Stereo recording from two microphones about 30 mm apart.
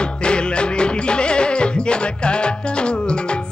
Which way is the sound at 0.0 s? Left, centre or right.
Left.